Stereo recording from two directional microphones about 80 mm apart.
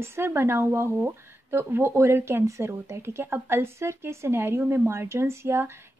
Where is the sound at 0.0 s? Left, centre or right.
Right.